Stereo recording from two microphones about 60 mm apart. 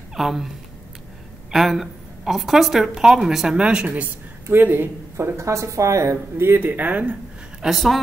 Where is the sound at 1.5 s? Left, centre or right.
Centre.